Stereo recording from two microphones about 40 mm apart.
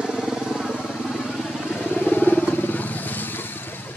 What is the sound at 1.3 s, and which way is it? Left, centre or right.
Vehicle, centre.